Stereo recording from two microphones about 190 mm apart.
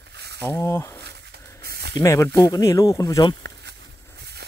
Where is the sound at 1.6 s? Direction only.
55° right (ahead or behind).